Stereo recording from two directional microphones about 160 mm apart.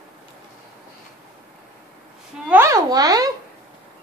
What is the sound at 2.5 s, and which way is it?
Speech, 20° right (ahead or behind).